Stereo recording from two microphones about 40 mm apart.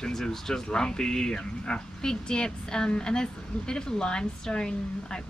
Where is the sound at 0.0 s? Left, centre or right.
Centre.